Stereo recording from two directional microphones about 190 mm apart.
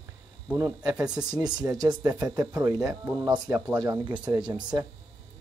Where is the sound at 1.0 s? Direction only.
20° right (ahead or behind).